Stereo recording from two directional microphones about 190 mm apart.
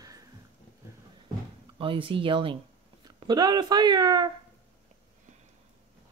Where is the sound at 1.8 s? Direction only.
25° right (ahead or behind).